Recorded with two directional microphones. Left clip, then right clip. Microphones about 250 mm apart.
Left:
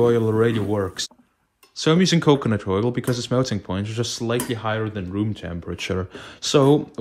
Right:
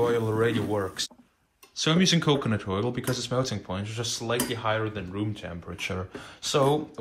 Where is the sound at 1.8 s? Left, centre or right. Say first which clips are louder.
Left 5 dB; left.